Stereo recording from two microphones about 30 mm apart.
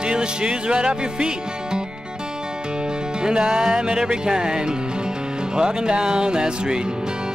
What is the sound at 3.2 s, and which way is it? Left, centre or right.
Music, right.